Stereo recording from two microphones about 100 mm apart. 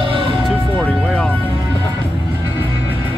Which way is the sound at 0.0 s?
60° right (ahead or behind).